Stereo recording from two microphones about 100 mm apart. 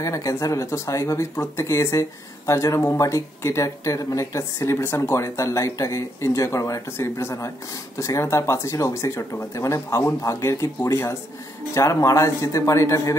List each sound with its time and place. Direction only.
0.0 s speech: 35° left (ahead or behind)